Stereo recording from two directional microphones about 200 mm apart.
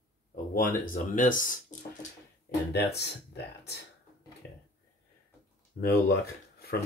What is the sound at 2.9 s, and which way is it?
Speech, 55° left (ahead or behind).